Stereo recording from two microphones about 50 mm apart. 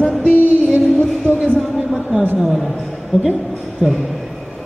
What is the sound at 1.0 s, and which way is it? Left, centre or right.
Speech, left.